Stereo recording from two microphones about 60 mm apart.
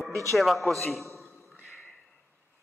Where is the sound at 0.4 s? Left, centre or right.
Centre.